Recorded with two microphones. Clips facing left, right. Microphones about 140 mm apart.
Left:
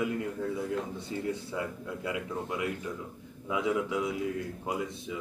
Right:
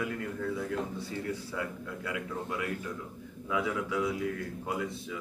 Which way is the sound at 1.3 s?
20° left (ahead or behind).